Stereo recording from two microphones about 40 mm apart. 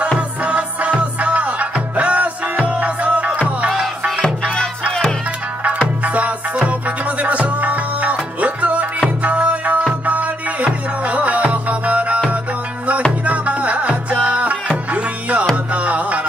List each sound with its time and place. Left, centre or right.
0.5 s music: right
6.0 s music: right
13.2 s music: right
15.7 s music: right